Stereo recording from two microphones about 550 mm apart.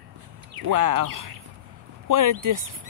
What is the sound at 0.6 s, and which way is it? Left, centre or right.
Speech, right.